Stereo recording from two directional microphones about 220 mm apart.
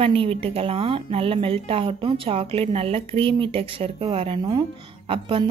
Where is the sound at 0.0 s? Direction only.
25° right (ahead or behind).